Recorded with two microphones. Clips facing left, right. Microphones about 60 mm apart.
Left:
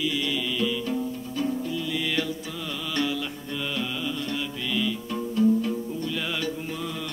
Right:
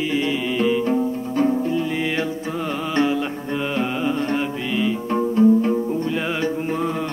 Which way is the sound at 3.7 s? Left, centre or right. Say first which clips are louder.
Right 9 dB; right.